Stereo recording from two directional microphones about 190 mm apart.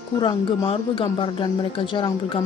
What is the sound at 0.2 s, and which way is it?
Speech, 25° left (ahead or behind).